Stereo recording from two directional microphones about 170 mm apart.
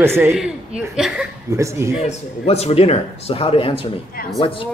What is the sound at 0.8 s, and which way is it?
Speech, 5° right (ahead or behind).